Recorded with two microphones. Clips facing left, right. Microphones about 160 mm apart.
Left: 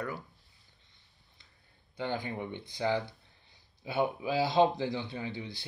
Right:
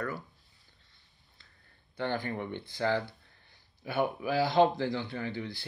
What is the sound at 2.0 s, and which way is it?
Speech, 15° left (ahead or behind).